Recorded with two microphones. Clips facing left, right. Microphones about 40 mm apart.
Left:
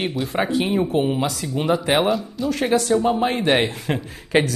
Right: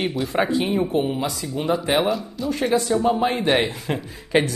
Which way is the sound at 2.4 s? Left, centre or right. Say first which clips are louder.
Left 1 dB; centre.